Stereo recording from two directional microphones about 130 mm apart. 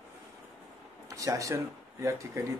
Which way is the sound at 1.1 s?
25° right (ahead or behind).